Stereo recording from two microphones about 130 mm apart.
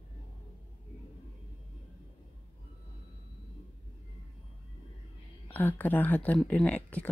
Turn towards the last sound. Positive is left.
turn(degrees=10)  # may be behind; listen again after turning